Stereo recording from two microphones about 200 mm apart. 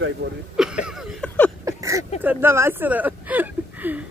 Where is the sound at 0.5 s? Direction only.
5° right (ahead or behind).